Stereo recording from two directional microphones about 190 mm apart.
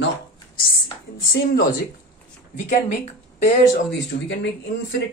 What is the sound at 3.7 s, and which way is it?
Speech, 65° left (ahead or behind).